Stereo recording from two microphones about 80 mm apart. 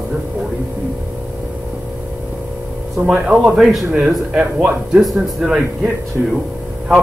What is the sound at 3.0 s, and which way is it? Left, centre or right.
Speech, centre.